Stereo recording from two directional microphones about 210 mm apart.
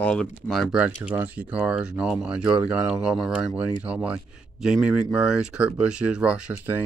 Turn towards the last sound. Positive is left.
turn(degrees=-10)  # may be behind; listen again after turning